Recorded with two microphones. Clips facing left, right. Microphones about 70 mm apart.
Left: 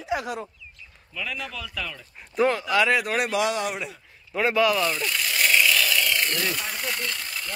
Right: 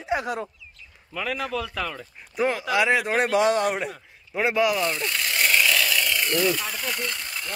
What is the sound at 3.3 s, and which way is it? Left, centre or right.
Speech, right.